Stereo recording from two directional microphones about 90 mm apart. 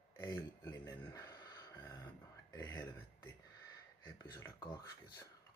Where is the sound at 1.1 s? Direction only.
45° left (ahead or behind).